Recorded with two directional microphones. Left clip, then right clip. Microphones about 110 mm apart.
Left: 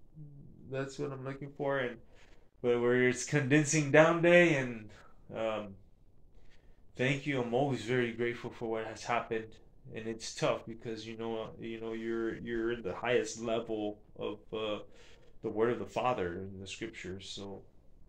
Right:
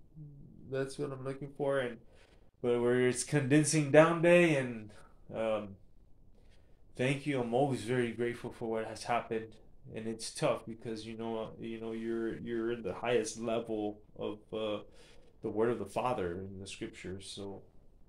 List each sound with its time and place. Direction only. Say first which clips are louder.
0.7 s speech: right 1 dB; 20° right (ahead or behind)
7.0 s speech: left 1 dB; 20° right (ahead or behind)